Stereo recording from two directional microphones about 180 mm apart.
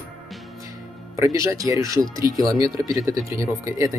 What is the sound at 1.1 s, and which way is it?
Speech, 15° right (ahead or behind).